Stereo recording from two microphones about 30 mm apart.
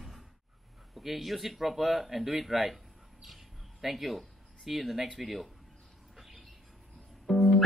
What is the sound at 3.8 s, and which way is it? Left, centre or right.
Speech, centre.